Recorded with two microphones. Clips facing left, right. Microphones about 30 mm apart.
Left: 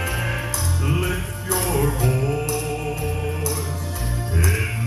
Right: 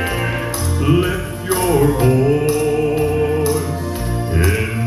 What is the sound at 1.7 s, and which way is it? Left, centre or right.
Music, right.